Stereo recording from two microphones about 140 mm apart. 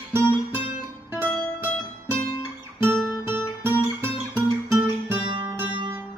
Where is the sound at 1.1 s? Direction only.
15° right (ahead or behind).